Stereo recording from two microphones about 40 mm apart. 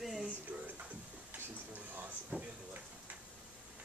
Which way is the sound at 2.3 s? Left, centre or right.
Right.